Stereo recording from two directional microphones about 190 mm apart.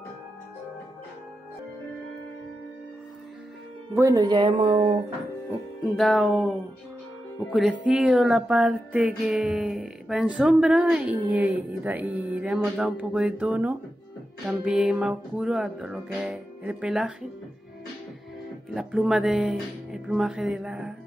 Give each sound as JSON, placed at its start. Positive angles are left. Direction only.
{"t": 4.0, "sound": "speech", "side_deg": -20}
{"t": 5.8, "sound": "music", "side_deg": 0}
{"t": 7.8, "sound": "music", "side_deg": -5}
{"t": 18.8, "sound": "music", "side_deg": -5}